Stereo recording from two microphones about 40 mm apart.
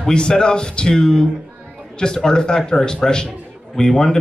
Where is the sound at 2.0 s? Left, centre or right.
Centre.